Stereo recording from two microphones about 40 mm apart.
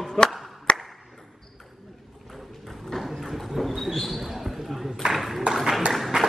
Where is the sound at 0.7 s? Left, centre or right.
Centre.